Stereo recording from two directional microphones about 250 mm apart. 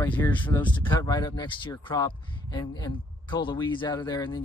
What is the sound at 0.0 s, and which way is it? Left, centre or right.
Speech, centre.